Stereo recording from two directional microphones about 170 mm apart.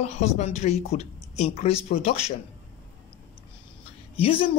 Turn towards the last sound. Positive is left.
turn(degrees=30)  # may be behind; listen again after turning